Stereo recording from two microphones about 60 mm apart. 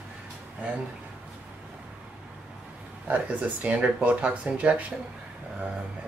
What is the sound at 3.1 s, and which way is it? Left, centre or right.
Speech, right.